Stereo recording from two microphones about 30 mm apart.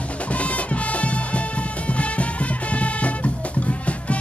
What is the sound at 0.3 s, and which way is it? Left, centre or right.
Music, left.